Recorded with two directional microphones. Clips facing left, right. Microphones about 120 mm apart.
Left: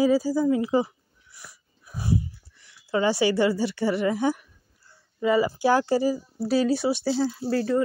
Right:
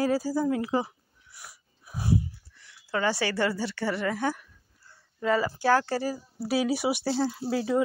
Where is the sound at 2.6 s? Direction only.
15° left (ahead or behind).